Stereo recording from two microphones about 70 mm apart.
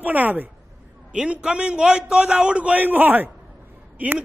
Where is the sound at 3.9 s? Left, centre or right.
Right.